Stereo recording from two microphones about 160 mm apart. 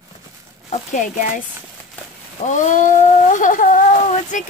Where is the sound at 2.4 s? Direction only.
50° left (ahead or behind).